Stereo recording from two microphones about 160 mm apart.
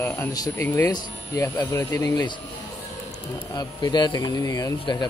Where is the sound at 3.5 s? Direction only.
25° left (ahead or behind).